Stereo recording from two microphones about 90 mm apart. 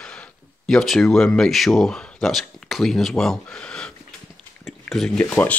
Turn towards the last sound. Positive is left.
turn(degrees=20)  # may be behind; listen again after turning